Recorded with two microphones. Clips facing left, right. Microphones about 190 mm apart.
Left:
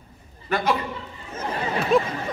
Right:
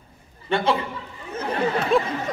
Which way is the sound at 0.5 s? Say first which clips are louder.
Right 2 dB; 30° right (ahead or behind).